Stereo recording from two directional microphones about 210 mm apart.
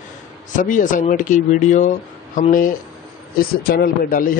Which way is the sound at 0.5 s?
40° left (ahead or behind).